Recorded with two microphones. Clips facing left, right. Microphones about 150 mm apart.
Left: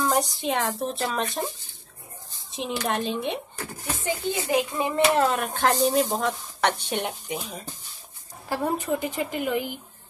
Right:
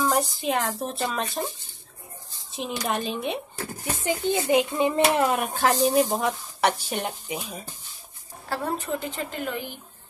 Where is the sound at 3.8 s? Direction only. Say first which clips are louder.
Right 2 dB; 20° right (ahead or behind); by 7.7 s 5° right (ahead or behind).